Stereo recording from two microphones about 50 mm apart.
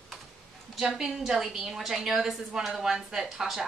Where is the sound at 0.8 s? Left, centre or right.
Centre.